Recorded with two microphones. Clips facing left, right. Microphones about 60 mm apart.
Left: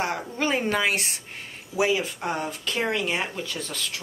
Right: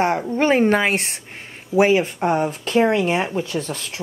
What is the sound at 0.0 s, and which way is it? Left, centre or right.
Speech, right.